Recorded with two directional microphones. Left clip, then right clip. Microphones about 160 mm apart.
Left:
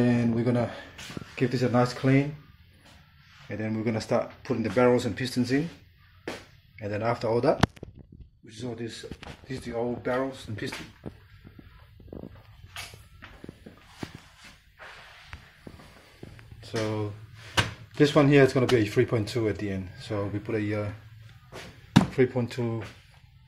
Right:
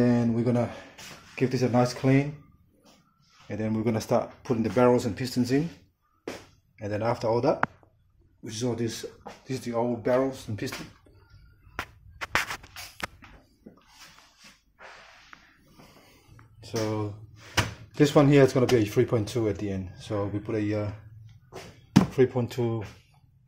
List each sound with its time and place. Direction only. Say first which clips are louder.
0.1 s a sound: right 1 dB; 10° right (ahead or behind)
1.3 s speech: even; 10° right (ahead or behind)
3.4 s speech: right 2 dB; 30° right (ahead or behind)
6.8 s speech: even; 20° right (ahead or behind)
16.6 s speech: even; 10° right (ahead or behind)
21.9 s speech: right 1 dB; 15° right (ahead or behind)